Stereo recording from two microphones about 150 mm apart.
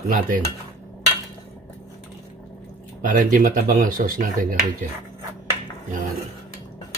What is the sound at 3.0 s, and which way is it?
Speech, 65° right (ahead or behind).